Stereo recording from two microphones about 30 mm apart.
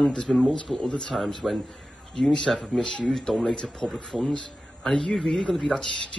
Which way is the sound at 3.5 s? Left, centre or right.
Centre.